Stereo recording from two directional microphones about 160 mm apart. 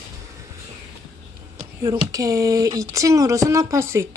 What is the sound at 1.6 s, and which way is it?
Speech, 20° right (ahead or behind).